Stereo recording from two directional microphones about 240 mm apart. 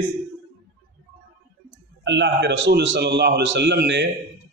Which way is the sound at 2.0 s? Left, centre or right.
Right.